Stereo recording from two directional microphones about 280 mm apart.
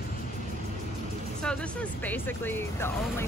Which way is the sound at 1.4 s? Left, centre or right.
Centre.